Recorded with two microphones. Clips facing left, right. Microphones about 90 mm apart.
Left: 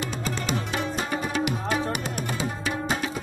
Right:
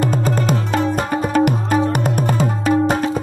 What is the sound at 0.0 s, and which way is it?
Music, 45° right (ahead or behind).